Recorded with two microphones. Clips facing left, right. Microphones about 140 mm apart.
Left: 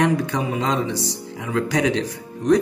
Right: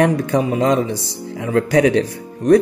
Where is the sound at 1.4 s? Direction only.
55° right (ahead or behind).